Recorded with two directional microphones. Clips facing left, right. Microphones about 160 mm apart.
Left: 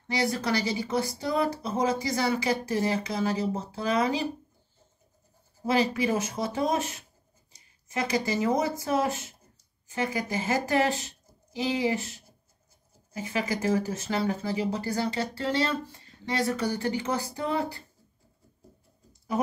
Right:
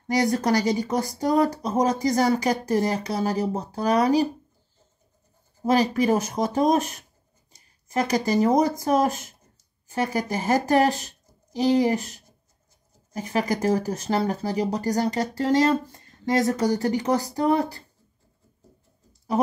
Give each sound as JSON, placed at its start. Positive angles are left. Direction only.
{"t": 0.1, "sound": "speech", "side_deg": -45}
{"t": 5.7, "sound": "speech", "side_deg": -40}